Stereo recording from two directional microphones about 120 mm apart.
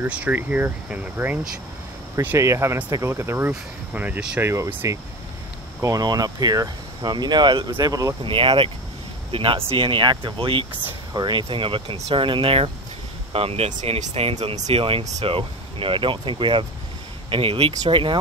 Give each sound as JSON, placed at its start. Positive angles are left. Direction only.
{"t": 0.0, "sound": "speech", "side_deg": -10}
{"t": 2.1, "sound": "speech", "side_deg": -25}
{"t": 4.4, "sound": "speech", "side_deg": -20}
{"t": 8.2, "sound": "speech", "side_deg": -45}
{"t": 14.7, "sound": "speech", "side_deg": -50}